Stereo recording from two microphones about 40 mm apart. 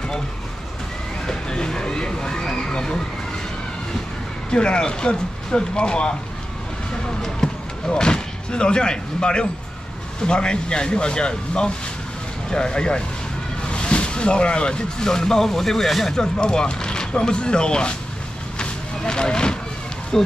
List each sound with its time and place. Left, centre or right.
1.2 s a sound: centre
4.5 s speech: left
7.2 s speech: centre
16.2 s speech: centre
18.6 s a sound: left
20.1 s speech: centre